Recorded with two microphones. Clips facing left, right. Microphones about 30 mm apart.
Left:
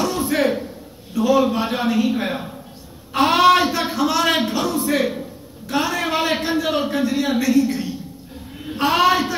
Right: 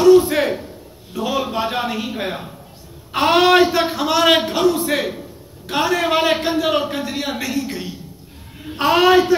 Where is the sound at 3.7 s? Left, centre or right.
Right.